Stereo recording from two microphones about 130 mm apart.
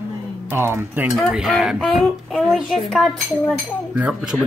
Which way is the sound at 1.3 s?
Centre (ahead or behind).